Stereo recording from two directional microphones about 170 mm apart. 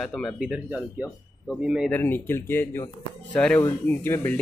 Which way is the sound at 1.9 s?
10° left (ahead or behind).